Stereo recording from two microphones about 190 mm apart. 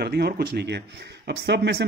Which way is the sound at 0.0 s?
55° right (ahead or behind).